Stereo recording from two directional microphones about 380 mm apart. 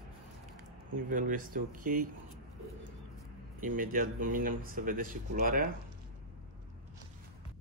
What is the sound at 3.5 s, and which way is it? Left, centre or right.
Speech, right.